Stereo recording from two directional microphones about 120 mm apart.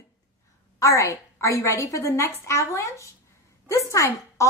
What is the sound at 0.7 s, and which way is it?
Speech, 25° left (ahead or behind).